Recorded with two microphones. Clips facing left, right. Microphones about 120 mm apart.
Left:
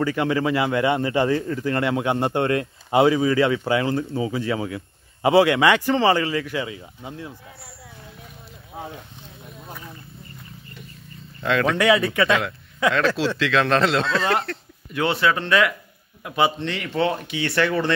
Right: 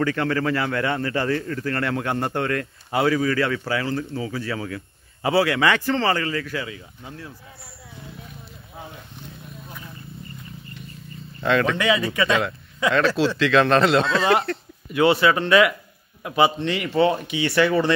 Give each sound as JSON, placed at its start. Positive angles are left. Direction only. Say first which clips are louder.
{"t": 0.0, "sound": "a man's voice", "louder": "left 1 dB", "side_deg": 15}
{"t": 11.4, "sound": "speech", "louder": "right 1 dB", "side_deg": 0}
{"t": 11.8, "sound": "speech", "louder": "left 3 dB", "side_deg": 70}
{"t": 12.2, "sound": "speech", "louder": "left 1 dB", "side_deg": 0}